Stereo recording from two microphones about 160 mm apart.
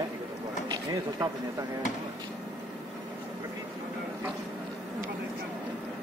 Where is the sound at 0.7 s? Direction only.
25° right (ahead or behind).